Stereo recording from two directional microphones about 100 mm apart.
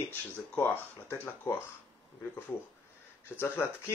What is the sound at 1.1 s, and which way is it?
Speech, 20° left (ahead or behind).